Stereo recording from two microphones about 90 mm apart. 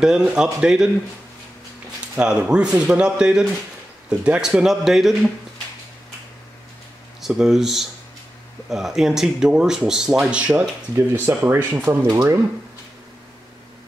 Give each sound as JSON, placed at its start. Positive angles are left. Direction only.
{"t": 0.0, "sound": "speech", "side_deg": -10}
{"t": 2.1, "sound": "speech", "side_deg": -10}
{"t": 7.2, "sound": "speech", "side_deg": -5}
{"t": 11.0, "sound": "speech", "side_deg": -25}